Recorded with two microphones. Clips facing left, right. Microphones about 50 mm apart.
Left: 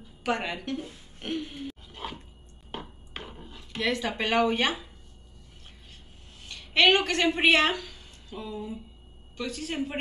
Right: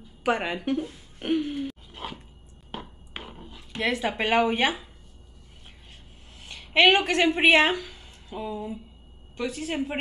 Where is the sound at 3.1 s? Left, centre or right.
Centre.